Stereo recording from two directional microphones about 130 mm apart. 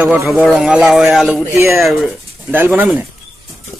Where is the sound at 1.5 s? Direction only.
20° right (ahead or behind).